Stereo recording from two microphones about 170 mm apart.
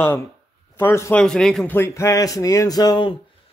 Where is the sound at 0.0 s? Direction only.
15° left (ahead or behind).